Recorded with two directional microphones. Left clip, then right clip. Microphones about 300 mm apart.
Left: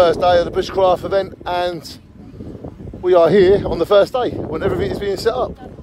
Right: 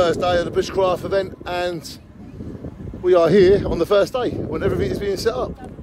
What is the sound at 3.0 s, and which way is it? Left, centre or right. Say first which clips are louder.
Speech: left 2 dB; centre.